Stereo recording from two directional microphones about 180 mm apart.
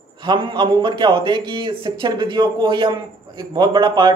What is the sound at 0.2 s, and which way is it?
A man's voice, 25° right (ahead or behind).